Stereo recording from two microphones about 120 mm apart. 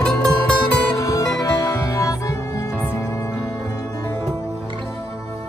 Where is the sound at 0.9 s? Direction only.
30° left (ahead or behind).